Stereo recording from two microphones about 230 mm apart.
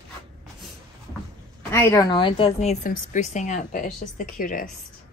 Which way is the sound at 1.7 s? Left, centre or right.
Centre.